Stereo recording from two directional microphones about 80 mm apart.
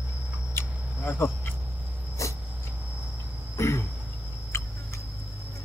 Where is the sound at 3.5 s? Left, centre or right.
Left.